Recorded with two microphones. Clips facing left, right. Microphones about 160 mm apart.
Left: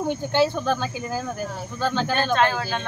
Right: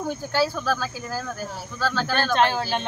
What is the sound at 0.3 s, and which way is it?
Speech, 20° left (ahead or behind).